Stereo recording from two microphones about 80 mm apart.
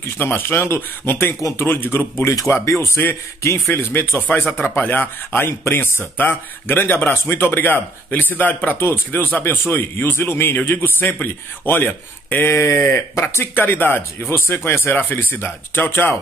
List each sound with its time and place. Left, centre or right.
0.2 s a man's voice: left